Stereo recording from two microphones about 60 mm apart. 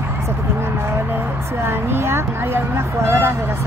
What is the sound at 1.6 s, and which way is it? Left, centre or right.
Speech, right.